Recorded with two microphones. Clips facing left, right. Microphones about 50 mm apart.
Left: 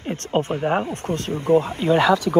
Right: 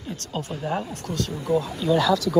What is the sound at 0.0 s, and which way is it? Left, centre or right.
Speech, left.